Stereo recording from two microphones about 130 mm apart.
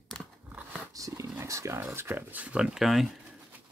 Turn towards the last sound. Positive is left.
turn(degrees=0)  # may be behind; listen again after turning